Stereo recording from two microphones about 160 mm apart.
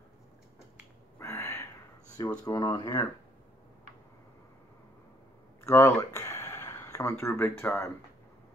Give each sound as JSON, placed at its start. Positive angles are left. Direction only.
{"t": 1.1, "sound": "a sound", "side_deg": 20}
{"t": 2.4, "sound": "speech", "side_deg": 20}
{"t": 5.6, "sound": "speech", "side_deg": 15}